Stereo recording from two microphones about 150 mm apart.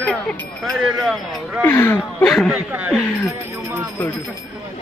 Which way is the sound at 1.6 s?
15° left (ahead or behind).